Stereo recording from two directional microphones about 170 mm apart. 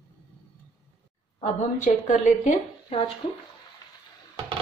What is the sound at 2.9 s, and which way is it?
Speech, 35° left (ahead or behind).